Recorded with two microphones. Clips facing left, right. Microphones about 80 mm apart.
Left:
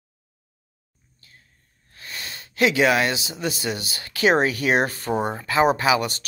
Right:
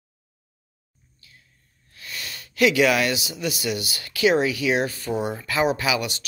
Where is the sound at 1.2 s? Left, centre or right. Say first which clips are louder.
Left 1 dB; left.